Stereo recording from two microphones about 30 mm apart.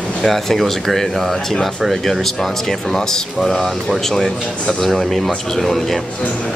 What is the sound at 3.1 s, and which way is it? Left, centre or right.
Speech, centre.